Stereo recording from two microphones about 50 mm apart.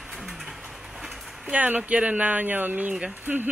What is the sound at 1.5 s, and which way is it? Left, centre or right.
Speech, right.